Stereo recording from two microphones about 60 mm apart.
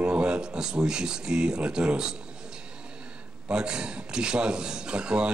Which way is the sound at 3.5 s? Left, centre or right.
Centre.